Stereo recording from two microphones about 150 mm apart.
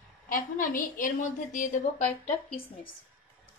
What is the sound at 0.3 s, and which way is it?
A woman's voice, 65° left (ahead or behind).